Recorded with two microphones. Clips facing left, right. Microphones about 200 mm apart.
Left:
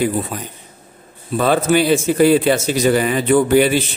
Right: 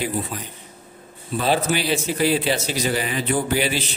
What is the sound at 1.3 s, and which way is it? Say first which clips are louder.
A man's voice: left 6 dB; 50° left (ahead or behind).